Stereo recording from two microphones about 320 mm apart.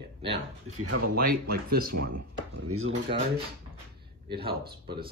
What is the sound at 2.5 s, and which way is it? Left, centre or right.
Speech, right.